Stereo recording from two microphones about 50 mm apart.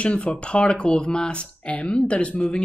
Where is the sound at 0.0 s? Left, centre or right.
Left.